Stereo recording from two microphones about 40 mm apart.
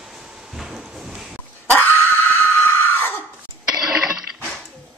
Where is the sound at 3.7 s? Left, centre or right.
Centre.